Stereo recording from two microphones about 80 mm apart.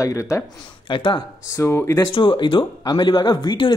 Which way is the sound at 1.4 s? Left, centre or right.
Left.